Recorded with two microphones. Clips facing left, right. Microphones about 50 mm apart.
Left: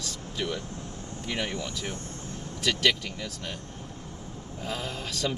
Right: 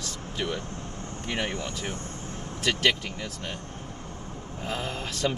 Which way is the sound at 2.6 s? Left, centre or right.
Right.